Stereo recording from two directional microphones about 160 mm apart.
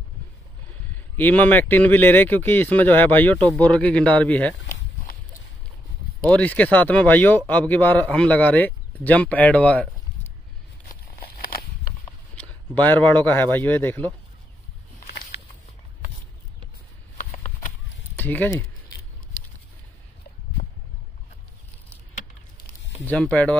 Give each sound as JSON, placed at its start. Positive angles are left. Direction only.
{"t": 0.9, "sound": "speech", "side_deg": 10}
{"t": 6.3, "sound": "speech", "side_deg": 10}
{"t": 12.4, "sound": "speech", "side_deg": 10}
{"t": 18.2, "sound": "speech", "side_deg": 10}
{"t": 23.0, "sound": "speech", "side_deg": 10}